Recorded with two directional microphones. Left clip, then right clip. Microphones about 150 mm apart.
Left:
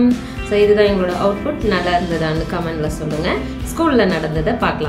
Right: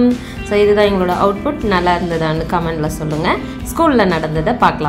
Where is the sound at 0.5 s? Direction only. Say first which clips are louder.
Right 1 dB; 40° right (ahead or behind).